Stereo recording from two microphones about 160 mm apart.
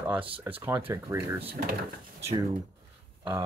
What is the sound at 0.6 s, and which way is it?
Speech, 15° right (ahead or behind).